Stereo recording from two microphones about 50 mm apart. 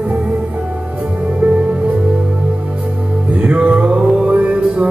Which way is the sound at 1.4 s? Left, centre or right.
Right.